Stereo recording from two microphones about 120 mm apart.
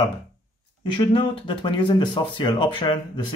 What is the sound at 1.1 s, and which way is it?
Speech, 45° left (ahead or behind).